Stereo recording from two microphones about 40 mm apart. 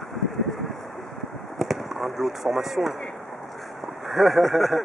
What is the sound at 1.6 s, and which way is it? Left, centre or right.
Speech, centre.